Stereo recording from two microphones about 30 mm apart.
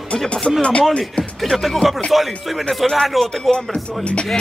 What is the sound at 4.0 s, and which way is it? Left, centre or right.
Speech, left.